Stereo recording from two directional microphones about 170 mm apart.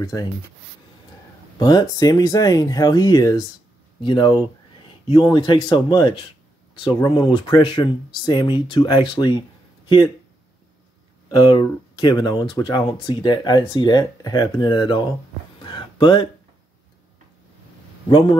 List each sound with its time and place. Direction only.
0.0 s speech: 20° left (ahead or behind)
1.6 s speech: 20° left (ahead or behind)
11.2 s speech: 25° left (ahead or behind)
15.6 s a sound: 25° left (ahead or behind)
18.0 s speech: 30° left (ahead or behind)